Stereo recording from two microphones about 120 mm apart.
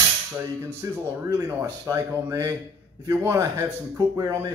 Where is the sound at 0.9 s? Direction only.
20° right (ahead or behind).